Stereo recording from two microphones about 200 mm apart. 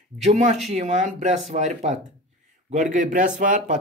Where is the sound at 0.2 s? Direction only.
35° right (ahead or behind).